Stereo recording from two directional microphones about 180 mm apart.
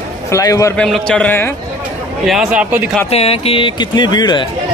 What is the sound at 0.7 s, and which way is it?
Speech, 5° left (ahead or behind).